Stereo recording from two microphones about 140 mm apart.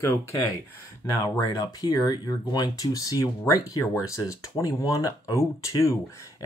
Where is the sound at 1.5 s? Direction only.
30° left (ahead or behind).